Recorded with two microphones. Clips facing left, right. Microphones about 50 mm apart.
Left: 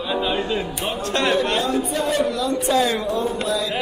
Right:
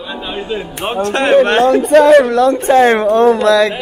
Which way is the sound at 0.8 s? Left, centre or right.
Right.